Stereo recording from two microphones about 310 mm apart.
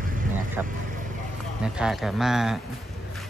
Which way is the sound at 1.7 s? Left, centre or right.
Centre.